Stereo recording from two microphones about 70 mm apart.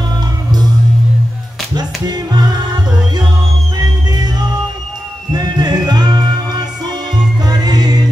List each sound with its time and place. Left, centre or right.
1.8 s music: right
3.7 s music: right
7.4 s music: right